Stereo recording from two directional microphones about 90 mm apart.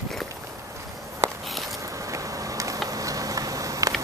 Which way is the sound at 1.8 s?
35° right (ahead or behind).